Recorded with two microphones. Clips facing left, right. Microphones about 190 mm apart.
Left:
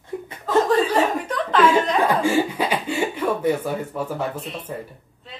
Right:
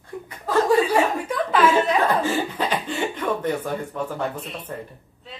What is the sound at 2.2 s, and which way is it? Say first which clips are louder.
Speech: left 3 dB; 10° left (ahead or behind).